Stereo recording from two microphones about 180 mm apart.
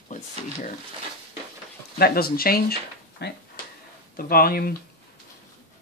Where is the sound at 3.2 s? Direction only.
70° left (ahead or behind).